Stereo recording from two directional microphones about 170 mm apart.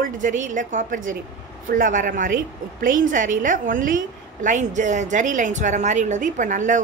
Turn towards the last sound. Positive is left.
turn(degrees=-45)  # may be behind; listen again after turning